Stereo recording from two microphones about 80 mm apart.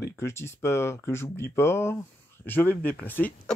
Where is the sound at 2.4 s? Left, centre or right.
Left.